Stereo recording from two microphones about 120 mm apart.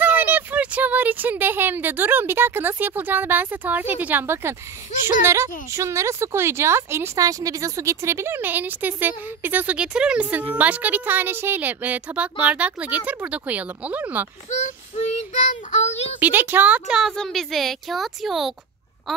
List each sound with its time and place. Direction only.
0.0 s speech: 15° right (ahead or behind)
14.6 s child singing: 60° left (ahead or behind)
16.2 s speech: 15° right (ahead or behind)